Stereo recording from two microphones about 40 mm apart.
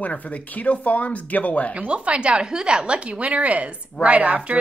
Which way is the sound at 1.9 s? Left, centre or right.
Right.